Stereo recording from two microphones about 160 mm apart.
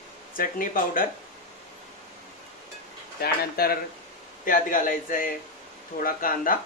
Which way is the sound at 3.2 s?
70° left (ahead or behind).